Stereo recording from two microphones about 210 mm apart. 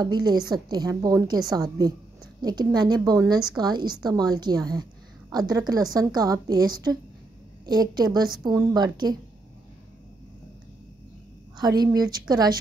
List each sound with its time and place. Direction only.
0.0 s a woman's voice: 20° right (ahead or behind)
11.5 s a woman's voice: 20° right (ahead or behind)